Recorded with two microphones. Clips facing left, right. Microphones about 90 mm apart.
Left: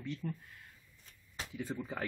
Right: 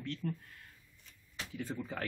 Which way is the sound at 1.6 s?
5° left (ahead or behind).